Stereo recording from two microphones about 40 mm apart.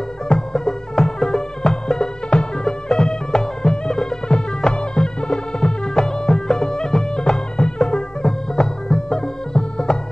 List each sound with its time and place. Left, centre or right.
0.3 s music: centre